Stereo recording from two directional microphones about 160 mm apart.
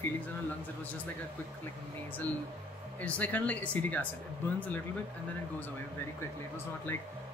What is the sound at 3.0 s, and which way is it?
Speech, 10° left (ahead or behind).